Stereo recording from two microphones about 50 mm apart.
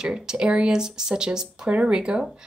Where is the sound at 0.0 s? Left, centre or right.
Centre.